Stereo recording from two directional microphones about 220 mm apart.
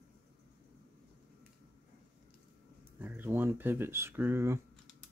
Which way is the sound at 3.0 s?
10° right (ahead or behind).